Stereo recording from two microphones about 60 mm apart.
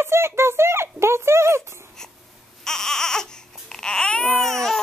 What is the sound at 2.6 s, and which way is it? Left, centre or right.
Baby cry, centre.